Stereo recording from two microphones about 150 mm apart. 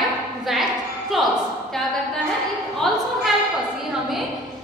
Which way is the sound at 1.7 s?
Centre (ahead or behind).